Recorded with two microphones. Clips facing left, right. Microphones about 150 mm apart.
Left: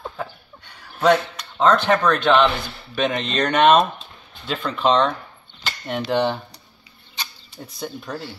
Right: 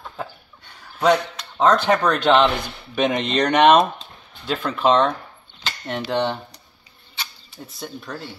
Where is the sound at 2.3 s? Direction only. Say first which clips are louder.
Even; 20° right (ahead or behind); by 5.1 s 5° right (ahead or behind).